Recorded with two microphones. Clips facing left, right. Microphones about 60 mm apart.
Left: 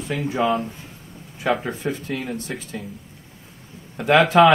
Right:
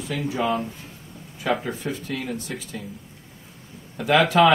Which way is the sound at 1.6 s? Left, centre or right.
Left.